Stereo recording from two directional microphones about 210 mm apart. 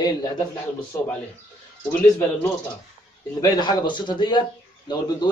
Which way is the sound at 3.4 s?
20° left (ahead or behind).